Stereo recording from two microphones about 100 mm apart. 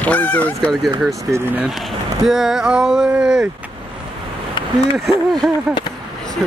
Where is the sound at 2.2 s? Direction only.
5° right (ahead or behind).